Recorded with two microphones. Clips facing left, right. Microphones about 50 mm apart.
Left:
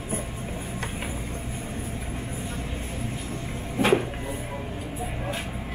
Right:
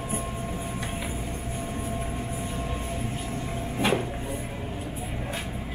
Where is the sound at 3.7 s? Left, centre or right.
Left.